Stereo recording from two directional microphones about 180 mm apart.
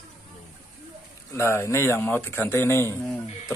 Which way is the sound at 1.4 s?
15° left (ahead or behind).